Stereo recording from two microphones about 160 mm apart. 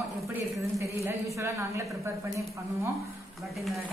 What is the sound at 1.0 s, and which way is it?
Speech, 15° right (ahead or behind).